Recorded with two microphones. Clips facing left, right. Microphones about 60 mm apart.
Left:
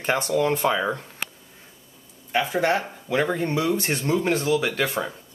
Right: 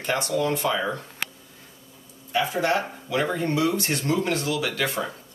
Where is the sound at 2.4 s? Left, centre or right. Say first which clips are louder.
Left 1 dB; left.